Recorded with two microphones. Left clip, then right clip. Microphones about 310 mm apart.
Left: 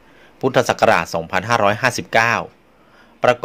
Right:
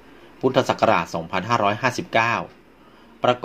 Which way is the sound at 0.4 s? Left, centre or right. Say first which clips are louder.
Left 3 dB; left.